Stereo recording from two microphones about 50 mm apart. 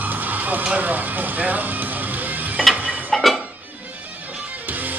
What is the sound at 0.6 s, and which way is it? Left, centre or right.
Speech, right.